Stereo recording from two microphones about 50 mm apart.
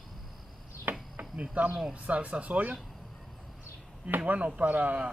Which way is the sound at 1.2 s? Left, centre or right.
Right.